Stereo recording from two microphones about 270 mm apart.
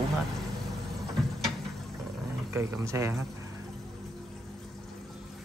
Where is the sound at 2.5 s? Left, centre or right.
Centre.